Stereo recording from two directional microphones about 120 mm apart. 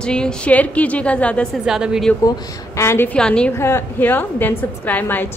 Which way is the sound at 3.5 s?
20° left (ahead or behind).